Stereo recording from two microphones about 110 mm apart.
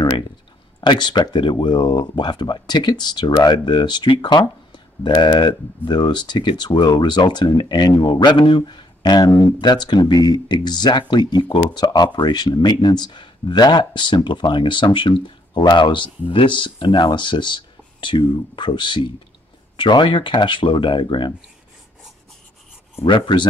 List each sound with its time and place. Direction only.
0.8 s speech: 45° left (ahead or behind)
23.0 s speech: 45° left (ahead or behind)